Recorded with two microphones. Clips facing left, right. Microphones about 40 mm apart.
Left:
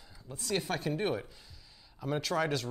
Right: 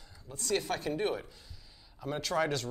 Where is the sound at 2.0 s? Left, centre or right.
Centre.